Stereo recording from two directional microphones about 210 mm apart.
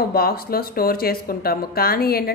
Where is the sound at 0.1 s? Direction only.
45° left (ahead or behind).